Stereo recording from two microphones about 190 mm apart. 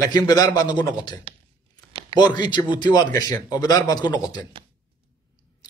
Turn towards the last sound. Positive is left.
turn(degrees=20)  # may be behind; listen again after turning